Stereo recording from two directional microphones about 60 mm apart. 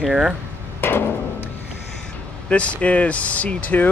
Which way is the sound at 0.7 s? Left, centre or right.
Left.